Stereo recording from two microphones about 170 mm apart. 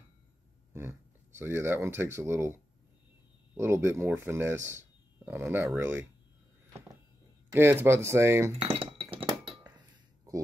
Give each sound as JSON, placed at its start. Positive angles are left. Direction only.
{"t": 0.7, "sound": "speech", "side_deg": -15}
{"t": 7.5, "sound": "speech", "side_deg": -15}
{"t": 8.5, "sound": "chink", "side_deg": -35}
{"t": 9.6, "sound": "dishes", "side_deg": -20}